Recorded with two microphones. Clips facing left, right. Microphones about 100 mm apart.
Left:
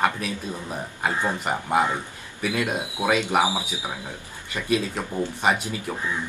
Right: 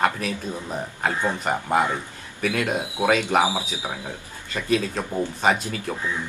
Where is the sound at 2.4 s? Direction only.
15° left (ahead or behind).